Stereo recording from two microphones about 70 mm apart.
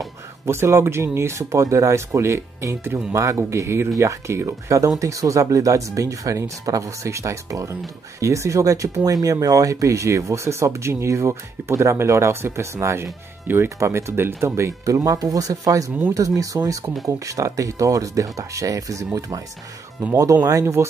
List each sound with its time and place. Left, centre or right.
0.5 s speech: right